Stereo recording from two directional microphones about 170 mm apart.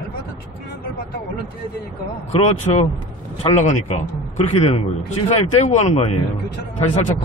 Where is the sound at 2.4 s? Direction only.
40° left (ahead or behind).